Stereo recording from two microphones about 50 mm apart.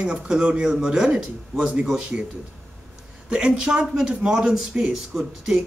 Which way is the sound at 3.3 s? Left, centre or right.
Centre.